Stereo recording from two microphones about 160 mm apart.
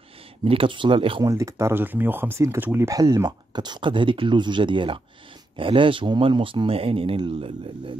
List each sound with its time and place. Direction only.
0.5 s speech: 35° right (ahead or behind)
1.2 s speech: 20° right (ahead or behind); by 7.9 s 35° right (ahead or behind)